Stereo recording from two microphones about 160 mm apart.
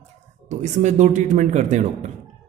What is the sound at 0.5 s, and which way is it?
A man's voice, 45° right (ahead or behind).